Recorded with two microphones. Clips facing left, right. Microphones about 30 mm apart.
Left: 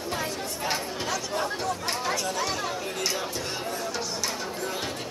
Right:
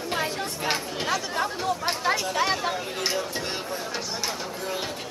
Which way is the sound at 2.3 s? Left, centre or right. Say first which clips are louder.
Right 4 dB; right.